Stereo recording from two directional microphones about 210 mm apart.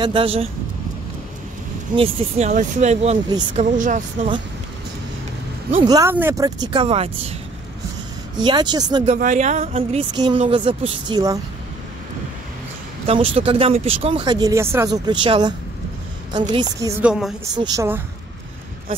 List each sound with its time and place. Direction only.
0.0 s speech: 25° right (ahead or behind)
2.0 s speech: 25° right (ahead or behind)
5.7 s speech: 20° right (ahead or behind)
8.4 s speech: 20° right (ahead or behind)
9.0 s speech: 35° right (ahead or behind); by 11.3 s 20° right (ahead or behind)
13.0 s speech: 25° right (ahead or behind)
17.0 s a woman's voice: 5° right (ahead or behind)
17.6 s a woman's voice: 15° right (ahead or behind)